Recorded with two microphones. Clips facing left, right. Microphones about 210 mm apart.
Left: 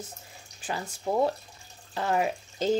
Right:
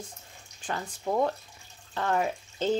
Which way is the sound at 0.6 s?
10° left (ahead or behind).